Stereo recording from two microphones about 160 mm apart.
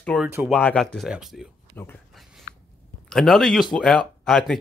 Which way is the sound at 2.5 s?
55° left (ahead or behind).